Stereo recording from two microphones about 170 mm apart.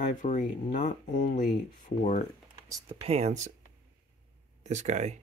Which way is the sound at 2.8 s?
35° right (ahead or behind).